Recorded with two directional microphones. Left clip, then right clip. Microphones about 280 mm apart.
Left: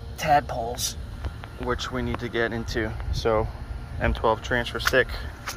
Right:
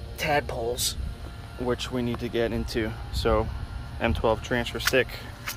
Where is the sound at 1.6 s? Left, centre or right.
Centre.